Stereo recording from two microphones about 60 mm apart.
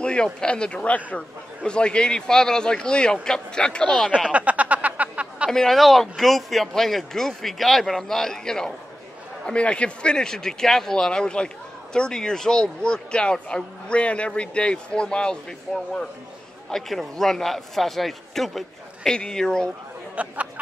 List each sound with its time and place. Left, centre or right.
0.0 s speech: centre
4.3 s a sound: right
5.5 s speech: centre
20.2 s speech: right